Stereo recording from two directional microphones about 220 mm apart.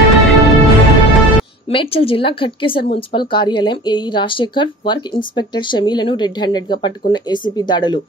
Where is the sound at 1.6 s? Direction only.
25° left (ahead or behind).